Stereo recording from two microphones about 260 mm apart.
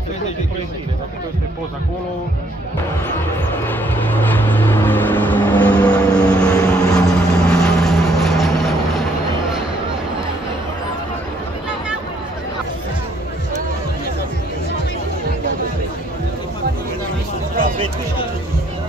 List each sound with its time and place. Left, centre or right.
3.6 s vehicle: centre